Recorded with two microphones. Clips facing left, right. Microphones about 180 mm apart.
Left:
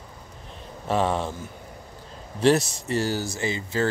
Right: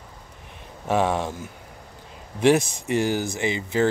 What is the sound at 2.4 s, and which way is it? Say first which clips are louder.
Speech: right 1 dB; 15° right (ahead or behind).